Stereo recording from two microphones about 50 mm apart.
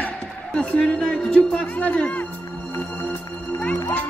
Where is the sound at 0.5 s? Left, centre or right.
Left.